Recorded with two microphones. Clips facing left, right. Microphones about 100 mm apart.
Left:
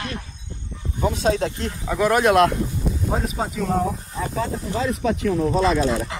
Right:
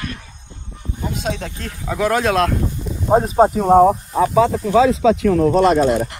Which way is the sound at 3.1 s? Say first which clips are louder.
Right 15 dB; 40° right (ahead or behind).